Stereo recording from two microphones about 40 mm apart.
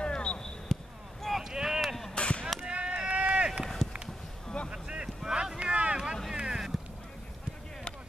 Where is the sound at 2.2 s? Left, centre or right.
Left.